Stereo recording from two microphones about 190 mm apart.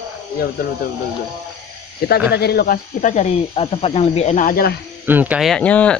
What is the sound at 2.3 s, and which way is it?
Speech, 55° left (ahead or behind).